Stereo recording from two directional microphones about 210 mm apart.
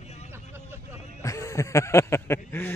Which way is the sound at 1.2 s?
15° left (ahead or behind).